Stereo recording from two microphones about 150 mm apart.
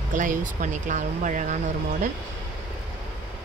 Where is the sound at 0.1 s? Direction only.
60° right (ahead or behind).